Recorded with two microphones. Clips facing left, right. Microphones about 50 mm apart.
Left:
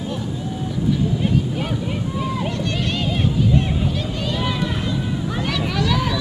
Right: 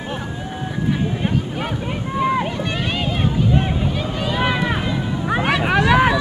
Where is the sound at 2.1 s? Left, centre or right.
Right.